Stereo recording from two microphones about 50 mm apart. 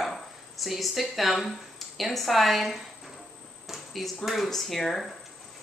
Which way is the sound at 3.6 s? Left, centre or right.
Centre.